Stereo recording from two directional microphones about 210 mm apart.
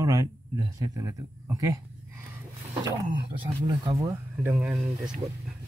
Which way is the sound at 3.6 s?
15° right (ahead or behind).